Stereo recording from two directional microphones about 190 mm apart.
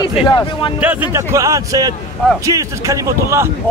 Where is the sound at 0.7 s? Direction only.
10° right (ahead or behind).